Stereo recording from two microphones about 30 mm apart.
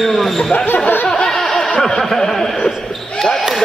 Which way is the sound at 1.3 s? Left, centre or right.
Centre.